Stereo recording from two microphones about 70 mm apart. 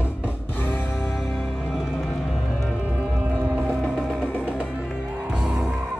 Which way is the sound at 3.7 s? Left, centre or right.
Centre.